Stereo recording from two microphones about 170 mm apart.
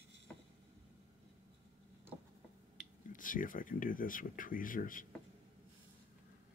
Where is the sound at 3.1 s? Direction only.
50° left (ahead or behind).